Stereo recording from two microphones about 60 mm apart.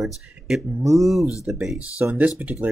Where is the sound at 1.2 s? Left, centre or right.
Left.